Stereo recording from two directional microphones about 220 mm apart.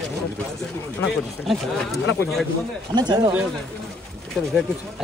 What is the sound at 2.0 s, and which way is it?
Speech, 55° left (ahead or behind).